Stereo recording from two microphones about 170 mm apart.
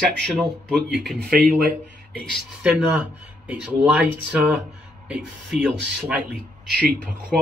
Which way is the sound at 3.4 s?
5° right (ahead or behind).